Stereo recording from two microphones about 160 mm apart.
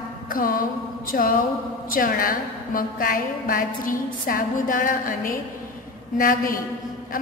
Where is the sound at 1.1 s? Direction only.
70° left (ahead or behind).